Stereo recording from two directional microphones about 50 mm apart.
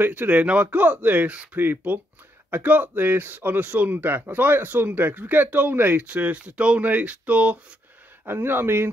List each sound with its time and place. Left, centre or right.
0.0 s a man's voice: right
1.6 s a man's voice: right
8.3 s speech: right